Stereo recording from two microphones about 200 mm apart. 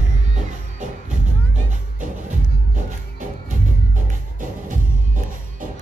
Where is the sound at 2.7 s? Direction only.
40° right (ahead or behind).